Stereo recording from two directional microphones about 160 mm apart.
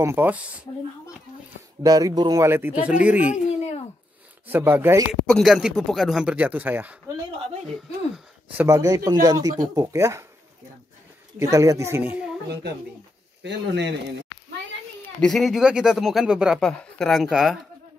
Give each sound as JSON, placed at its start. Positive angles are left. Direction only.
{"t": 0.0, "sound": "speech", "side_deg": -15}
{"t": 1.8, "sound": "speech", "side_deg": -20}
{"t": 4.5, "sound": "speech", "side_deg": -10}
{"t": 5.2, "sound": "speech", "side_deg": 0}
{"t": 8.5, "sound": "speech", "side_deg": -20}
{"t": 11.3, "sound": "speech", "side_deg": -20}
{"t": 13.4, "sound": "speech", "side_deg": -90}
{"t": 15.1, "sound": "speech", "side_deg": 5}